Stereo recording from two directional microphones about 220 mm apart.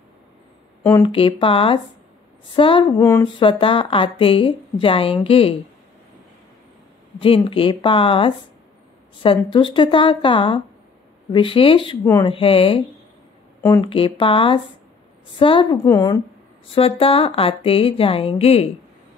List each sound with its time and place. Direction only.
1.0 s a woman's voice: 25° left (ahead or behind)
3.4 s a woman's voice: 25° left (ahead or behind)
7.2 s a woman's voice: 25° left (ahead or behind)
12.0 s speech: 15° left (ahead or behind)
12.3 s a woman's voice: 25° left (ahead or behind)
16.6 s a woman's voice: 25° left (ahead or behind)